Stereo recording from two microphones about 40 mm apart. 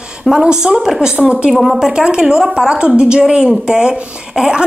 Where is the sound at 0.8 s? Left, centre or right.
Centre.